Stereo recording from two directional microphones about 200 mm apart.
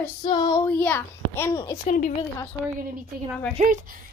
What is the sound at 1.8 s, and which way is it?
Speech, 40° left (ahead or behind).